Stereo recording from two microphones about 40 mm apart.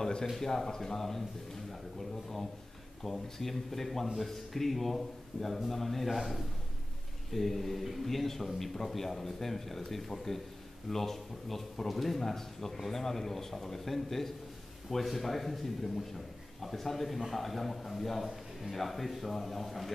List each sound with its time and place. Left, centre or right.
0.0 s a sound: centre
0.7 s a man's voice: centre
3.0 s a man's voice: centre